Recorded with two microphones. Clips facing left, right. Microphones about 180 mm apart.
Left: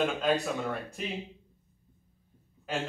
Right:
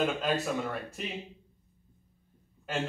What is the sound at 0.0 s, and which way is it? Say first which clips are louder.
Speech: left 1 dB; centre (ahead or behind).